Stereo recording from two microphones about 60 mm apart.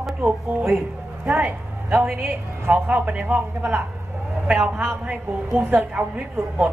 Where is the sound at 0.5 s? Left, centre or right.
Right.